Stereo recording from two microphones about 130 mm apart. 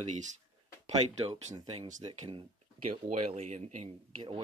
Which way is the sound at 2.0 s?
35° right (ahead or behind).